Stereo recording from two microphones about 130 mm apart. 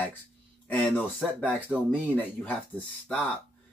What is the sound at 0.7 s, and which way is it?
Speech, 10° left (ahead or behind).